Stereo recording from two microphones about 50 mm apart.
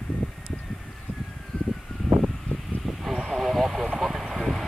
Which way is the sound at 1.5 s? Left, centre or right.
Left.